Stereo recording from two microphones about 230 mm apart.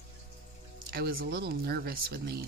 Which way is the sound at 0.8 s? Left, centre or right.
Right.